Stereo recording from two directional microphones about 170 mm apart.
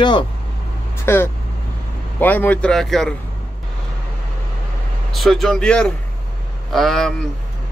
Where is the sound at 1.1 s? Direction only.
15° left (ahead or behind).